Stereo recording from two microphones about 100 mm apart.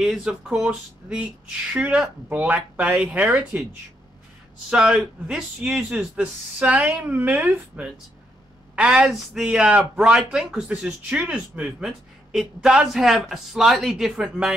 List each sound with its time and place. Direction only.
0.0 s speech: 5° right (ahead or behind)
4.6 s a woman's voice: 10° right (ahead or behind)